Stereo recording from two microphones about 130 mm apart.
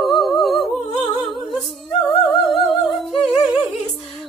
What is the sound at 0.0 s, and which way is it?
Humming, centre (ahead or behind).